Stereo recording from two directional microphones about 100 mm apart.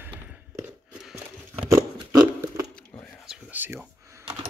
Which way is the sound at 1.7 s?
30° right (ahead or behind).